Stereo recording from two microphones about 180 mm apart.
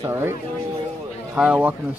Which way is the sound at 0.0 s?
15° right (ahead or behind).